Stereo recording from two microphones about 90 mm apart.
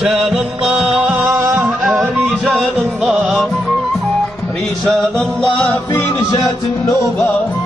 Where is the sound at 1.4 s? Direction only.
25° right (ahead or behind).